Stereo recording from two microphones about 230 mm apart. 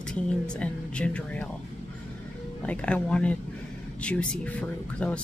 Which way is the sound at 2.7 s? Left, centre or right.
Centre.